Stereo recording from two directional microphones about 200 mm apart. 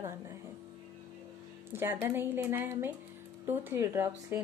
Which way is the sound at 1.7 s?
10° right (ahead or behind).